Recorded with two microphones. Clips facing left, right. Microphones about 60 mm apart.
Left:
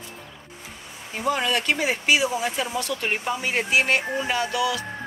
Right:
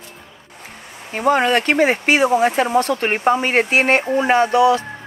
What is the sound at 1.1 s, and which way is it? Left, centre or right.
Speech, right.